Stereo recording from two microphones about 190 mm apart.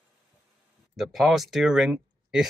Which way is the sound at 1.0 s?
Centre (ahead or behind).